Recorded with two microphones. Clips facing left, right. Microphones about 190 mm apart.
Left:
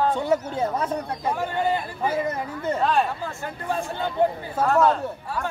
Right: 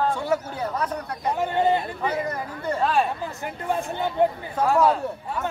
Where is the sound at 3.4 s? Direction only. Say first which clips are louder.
Right 2 dB; 15° right (ahead or behind).